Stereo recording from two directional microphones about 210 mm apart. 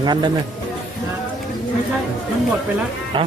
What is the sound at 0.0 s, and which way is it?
Speech, 20° right (ahead or behind).